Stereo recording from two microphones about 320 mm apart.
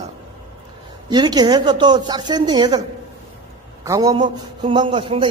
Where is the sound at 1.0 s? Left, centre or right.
Centre.